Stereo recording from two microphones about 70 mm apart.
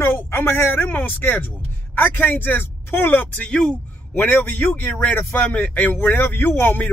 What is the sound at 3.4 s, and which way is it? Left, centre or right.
Speech, centre.